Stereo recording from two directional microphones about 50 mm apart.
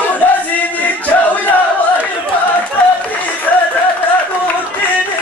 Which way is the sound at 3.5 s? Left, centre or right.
Left.